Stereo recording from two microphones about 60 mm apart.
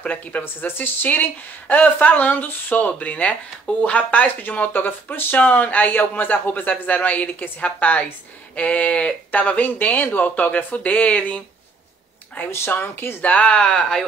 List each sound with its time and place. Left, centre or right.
0.0 s speech: left
12.4 s speech: left
13.2 s speech: left